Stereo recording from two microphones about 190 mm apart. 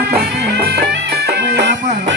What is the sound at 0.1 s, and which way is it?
Music, 55° right (ahead or behind).